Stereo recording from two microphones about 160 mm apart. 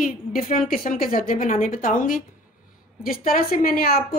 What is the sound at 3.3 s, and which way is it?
Speech, 60° left (ahead or behind).